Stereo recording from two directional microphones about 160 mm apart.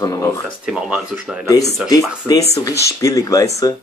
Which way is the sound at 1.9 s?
20° left (ahead or behind).